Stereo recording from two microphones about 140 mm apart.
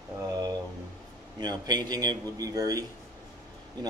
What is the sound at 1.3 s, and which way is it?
A man's voice, 30° right (ahead or behind).